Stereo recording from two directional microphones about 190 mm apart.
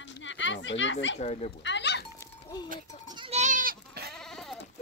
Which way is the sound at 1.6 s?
70° left (ahead or behind).